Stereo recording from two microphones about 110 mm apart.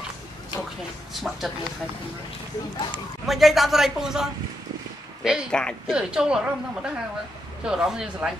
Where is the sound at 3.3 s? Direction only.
Centre (ahead or behind).